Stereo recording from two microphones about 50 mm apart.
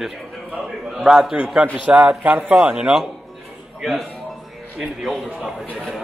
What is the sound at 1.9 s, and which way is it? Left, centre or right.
Speech, right.